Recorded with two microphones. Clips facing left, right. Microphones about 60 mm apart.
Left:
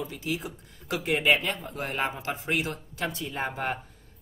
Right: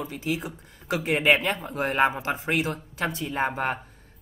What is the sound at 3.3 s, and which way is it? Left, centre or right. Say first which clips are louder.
Speech: right 6 dB; right.